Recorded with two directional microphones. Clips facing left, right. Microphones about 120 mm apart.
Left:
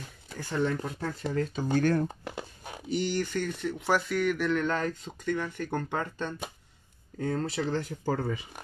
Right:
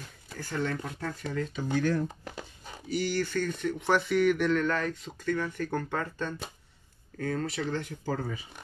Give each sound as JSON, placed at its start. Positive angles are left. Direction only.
{"t": 0.4, "sound": "speech", "side_deg": 20}
{"t": 0.8, "sound": "speech", "side_deg": 5}
{"t": 1.3, "sound": "speech", "side_deg": 35}
{"t": 1.8, "sound": "speech", "side_deg": 55}
{"t": 2.9, "sound": "speech", "side_deg": 20}
{"t": 4.6, "sound": "speech", "side_deg": 30}
{"t": 5.2, "sound": "speech", "side_deg": 15}